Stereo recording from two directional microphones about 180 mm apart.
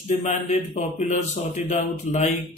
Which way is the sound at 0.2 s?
40° left (ahead or behind).